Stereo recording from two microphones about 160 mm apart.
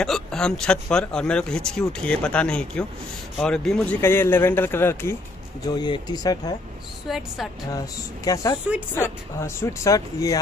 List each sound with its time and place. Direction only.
0.0 s speech: 5° left (ahead or behind)
5.8 s speech: 25° left (ahead or behind)
7.1 s speech: centre (ahead or behind)
7.7 s speech: 25° left (ahead or behind)